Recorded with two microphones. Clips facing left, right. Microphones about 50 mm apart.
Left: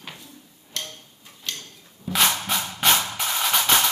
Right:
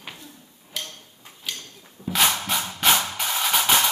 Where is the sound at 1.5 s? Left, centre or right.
Centre.